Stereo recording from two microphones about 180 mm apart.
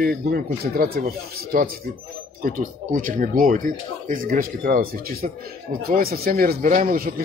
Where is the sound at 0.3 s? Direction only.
60° right (ahead or behind).